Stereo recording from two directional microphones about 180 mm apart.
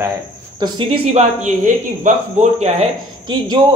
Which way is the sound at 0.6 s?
25° right (ahead or behind).